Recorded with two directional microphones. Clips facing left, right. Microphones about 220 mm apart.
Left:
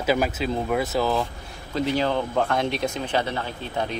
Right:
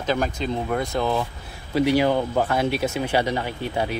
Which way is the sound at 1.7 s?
10° right (ahead or behind).